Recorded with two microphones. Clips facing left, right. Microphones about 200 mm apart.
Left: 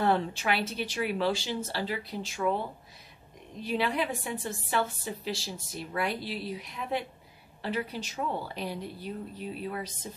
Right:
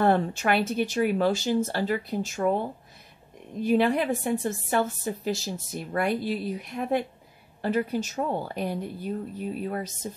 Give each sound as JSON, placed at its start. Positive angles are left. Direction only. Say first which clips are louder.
{"t": 0.0, "sound": "a woman's voice", "louder": "right 4 dB", "side_deg": -50}
{"t": 3.6, "sound": "a woman's voice", "louder": "right 7 dB", "side_deg": -50}